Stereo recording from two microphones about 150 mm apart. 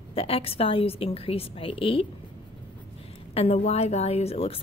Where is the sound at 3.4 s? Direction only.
45° left (ahead or behind).